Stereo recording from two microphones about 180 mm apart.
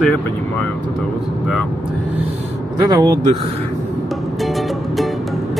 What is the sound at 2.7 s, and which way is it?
Speech, 20° right (ahead or behind).